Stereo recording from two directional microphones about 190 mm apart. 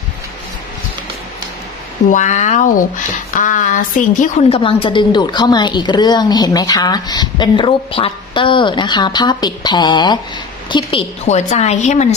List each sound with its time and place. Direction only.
2.0 s a woman's voice: 40° left (ahead or behind)